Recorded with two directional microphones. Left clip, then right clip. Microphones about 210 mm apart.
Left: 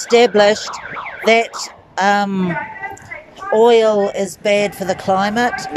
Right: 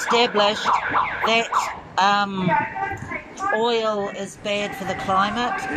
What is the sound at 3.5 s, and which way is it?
A woman's voice, 30° left (ahead or behind).